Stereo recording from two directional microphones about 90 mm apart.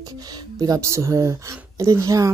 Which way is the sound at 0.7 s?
35° right (ahead or behind).